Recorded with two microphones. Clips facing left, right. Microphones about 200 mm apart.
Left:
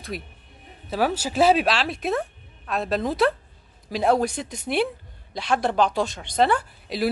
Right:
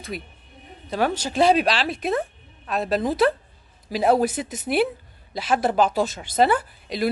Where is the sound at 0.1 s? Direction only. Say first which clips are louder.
Right 1 dB; centre (ahead or behind).